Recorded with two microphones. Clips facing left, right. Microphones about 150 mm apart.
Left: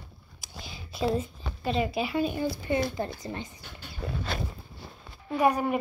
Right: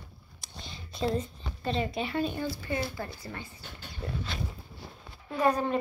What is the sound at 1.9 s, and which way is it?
A woman's voice, 5° left (ahead or behind).